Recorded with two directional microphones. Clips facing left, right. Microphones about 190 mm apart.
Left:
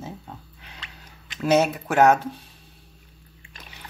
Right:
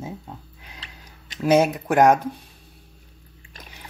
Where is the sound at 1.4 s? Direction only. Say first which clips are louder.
Right 2 dB; 10° right (ahead or behind).